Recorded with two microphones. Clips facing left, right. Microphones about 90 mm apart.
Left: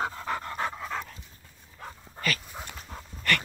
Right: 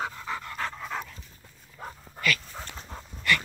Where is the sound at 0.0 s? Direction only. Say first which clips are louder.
Left 2 dB; 40° left (ahead or behind).